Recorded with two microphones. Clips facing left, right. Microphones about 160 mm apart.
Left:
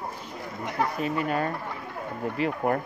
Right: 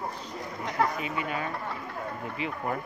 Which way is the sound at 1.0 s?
45° left (ahead or behind).